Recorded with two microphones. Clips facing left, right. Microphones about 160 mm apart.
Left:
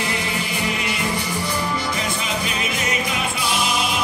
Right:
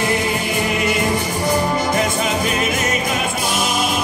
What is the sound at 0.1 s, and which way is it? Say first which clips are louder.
Music: right 6 dB; 45° right (ahead or behind).